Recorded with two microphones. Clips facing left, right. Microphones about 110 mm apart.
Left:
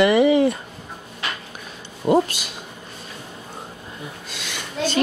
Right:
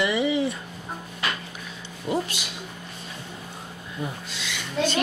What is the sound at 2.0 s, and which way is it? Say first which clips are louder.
Speech: left 9 dB; 45° left (ahead or behind).